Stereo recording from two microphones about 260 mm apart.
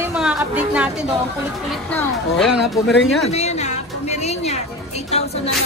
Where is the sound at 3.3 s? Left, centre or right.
Left.